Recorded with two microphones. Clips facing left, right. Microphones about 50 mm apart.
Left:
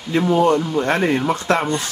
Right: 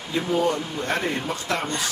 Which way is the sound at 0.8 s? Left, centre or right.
Left.